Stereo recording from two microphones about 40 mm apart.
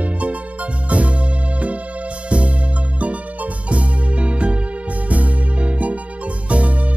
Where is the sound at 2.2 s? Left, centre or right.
Right.